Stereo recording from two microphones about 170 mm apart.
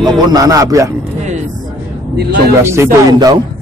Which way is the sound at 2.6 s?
15° right (ahead or behind).